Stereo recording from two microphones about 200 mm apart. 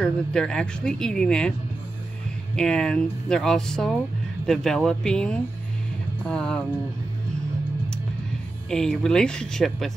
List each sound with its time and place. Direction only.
0.0 s speech: 5° left (ahead or behind)
2.5 s speech: 5° left (ahead or behind)
8.6 s speech: 5° left (ahead or behind)